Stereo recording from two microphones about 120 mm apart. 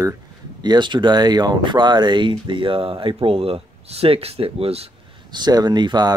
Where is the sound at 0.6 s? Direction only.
40° right (ahead or behind); by 4.9 s 55° right (ahead or behind).